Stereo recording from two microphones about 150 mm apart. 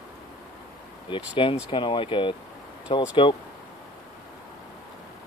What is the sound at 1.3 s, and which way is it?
Speech, 35° left (ahead or behind).